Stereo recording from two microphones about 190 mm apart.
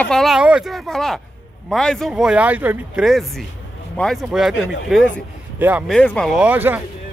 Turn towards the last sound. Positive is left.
turn(degrees=-10)  # may be behind; listen again after turning